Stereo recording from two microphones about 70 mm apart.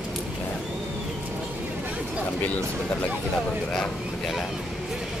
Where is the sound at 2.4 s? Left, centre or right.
Left.